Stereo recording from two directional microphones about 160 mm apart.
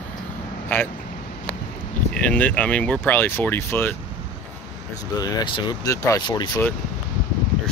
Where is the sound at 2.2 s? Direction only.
10° left (ahead or behind).